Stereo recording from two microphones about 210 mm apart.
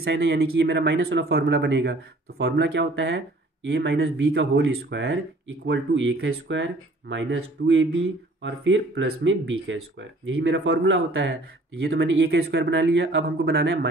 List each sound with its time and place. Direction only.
0.0 s speech: 55° right (ahead or behind)